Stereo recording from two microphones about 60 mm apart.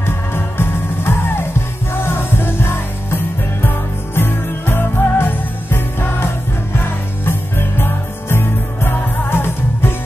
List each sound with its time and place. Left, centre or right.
0.0 s music: left
7.2 s music: left